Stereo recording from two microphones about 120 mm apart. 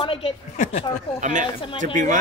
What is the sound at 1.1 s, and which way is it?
Speech, 90° right.